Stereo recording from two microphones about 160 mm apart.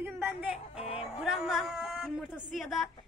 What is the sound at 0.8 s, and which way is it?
Music, 35° left (ahead or behind).